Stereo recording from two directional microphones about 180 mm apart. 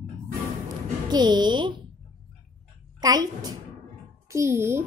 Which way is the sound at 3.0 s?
20° right (ahead or behind).